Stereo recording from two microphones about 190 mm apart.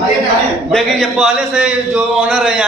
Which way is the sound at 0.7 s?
Centre (ahead or behind).